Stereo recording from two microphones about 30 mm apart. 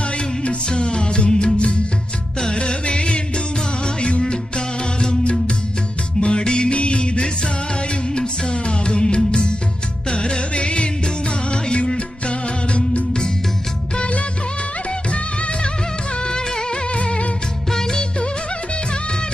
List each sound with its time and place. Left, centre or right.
0.4 s music: left
4.2 s music: left
6.7 s music: left
8.6 s music: left
16.3 s music: left
16.9 s music: left